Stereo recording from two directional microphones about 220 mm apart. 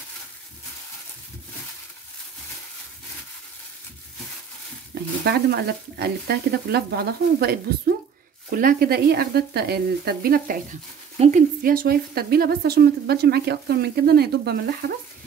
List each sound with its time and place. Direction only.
5.2 s speech: 45° right (ahead or behind)